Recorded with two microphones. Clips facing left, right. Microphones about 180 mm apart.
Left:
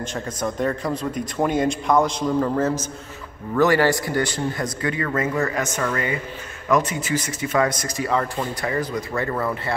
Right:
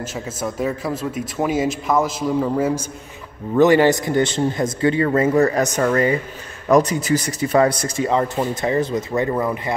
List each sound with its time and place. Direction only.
0.0 s speech: 5° right (ahead or behind)